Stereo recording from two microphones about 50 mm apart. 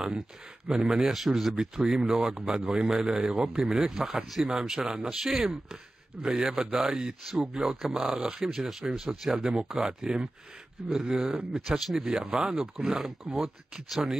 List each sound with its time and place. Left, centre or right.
0.7 s speech: centre
1.6 s speech: centre
9.3 s speech: centre